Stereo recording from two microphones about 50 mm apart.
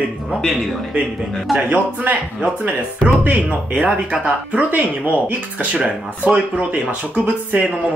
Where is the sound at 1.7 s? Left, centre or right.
Right.